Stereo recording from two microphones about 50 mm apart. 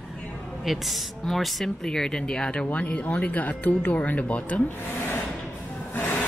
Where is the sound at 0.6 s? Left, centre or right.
Centre; by 4.6 s left.